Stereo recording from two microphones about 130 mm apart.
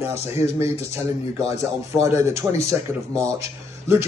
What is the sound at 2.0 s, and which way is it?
Speech, 25° right (ahead or behind).